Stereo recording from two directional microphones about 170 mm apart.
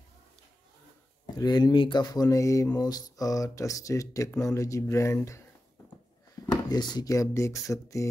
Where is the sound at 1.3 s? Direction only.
25° left (ahead or behind).